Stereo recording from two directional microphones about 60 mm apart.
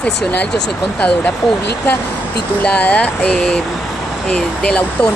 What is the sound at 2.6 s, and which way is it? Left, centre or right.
Speech, left.